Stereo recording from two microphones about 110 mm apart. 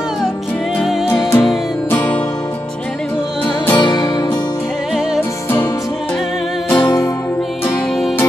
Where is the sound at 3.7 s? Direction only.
40° left (ahead or behind).